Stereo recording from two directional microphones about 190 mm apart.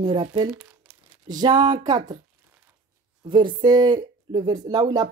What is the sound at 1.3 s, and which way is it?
Speech, 20° right (ahead or behind).